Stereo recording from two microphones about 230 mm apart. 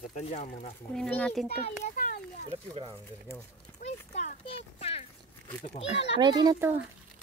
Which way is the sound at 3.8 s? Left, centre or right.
Left.